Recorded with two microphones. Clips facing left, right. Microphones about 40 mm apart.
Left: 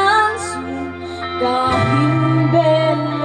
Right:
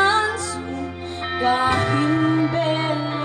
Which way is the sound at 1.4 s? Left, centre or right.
Left.